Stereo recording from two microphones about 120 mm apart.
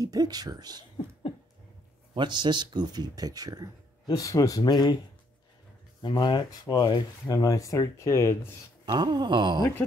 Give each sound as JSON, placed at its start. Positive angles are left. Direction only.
{"t": 0.0, "sound": "speech", "side_deg": -30}
{"t": 2.1, "sound": "speech", "side_deg": -40}
{"t": 4.0, "sound": "speech", "side_deg": 30}
{"t": 6.0, "sound": "speech", "side_deg": 35}
{"t": 8.8, "sound": "speech", "side_deg": -35}